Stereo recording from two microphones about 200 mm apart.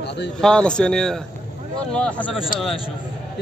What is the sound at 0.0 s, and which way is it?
Speech, 55° left (ahead or behind).